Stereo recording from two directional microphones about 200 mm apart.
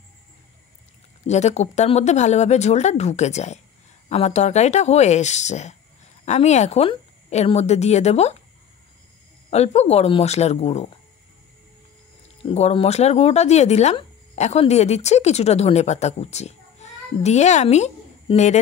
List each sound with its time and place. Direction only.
1.2 s speech: 35° left (ahead or behind)
9.5 s speech: 30° left (ahead or behind)
12.4 s speech: 30° left (ahead or behind)